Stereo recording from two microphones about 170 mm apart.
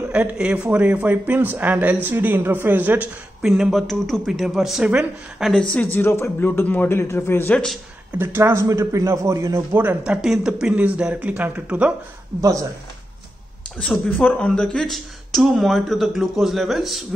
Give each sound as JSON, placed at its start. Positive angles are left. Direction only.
{"t": 0.1, "sound": "a man's voice", "side_deg": -5}
{"t": 8.2, "sound": "a man's voice", "side_deg": -15}
{"t": 12.4, "sound": "speech", "side_deg": -20}
{"t": 13.7, "sound": "a woman's voice", "side_deg": 5}